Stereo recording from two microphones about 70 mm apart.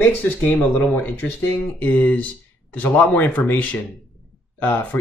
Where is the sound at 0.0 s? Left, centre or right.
Left.